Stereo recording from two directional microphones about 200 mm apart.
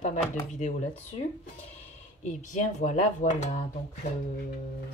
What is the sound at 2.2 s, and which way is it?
Speech, 35° left (ahead or behind).